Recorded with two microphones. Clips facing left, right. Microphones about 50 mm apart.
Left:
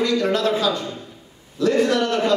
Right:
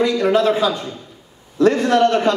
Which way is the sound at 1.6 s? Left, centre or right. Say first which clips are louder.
Right 5 dB; right.